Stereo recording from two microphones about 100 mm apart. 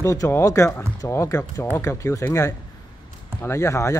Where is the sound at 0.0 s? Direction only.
30° left (ahead or behind).